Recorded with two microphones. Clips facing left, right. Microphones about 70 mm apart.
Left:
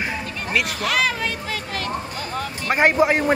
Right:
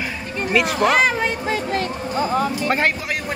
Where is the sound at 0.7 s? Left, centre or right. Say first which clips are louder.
Right 5 dB; right.